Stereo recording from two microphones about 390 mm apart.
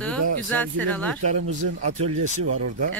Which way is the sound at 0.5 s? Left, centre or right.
Centre.